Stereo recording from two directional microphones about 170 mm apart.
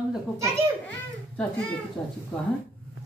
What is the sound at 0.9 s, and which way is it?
A child's voice, 5° left (ahead or behind).